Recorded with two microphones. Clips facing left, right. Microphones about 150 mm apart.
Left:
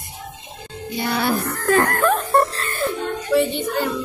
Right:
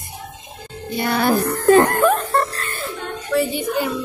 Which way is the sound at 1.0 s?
50° right (ahead or behind).